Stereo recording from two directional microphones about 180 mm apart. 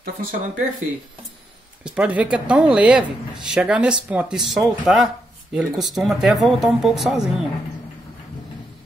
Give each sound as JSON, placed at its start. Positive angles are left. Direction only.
{"t": 0.0, "sound": "speech", "side_deg": -55}
{"t": 1.9, "sound": "speech", "side_deg": -5}